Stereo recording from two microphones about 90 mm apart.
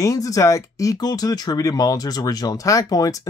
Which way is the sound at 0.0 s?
40° left (ahead or behind).